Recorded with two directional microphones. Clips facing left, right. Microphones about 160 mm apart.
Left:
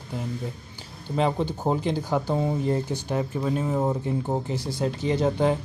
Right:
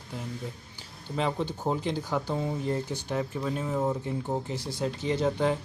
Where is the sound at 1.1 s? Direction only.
45° left (ahead or behind).